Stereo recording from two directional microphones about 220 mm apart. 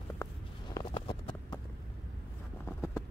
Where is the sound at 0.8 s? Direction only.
25° left (ahead or behind).